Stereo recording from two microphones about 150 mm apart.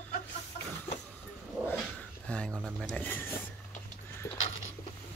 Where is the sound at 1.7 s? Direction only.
10° left (ahead or behind).